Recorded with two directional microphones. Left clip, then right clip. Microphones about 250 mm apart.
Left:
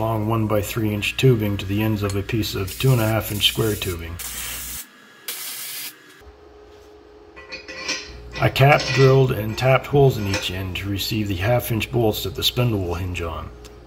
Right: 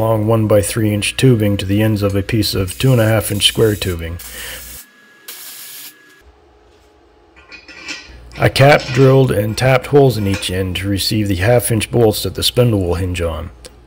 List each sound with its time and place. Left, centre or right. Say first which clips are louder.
0.0 s speech: right 8 dB; right
8.4 s speech: right 6 dB; right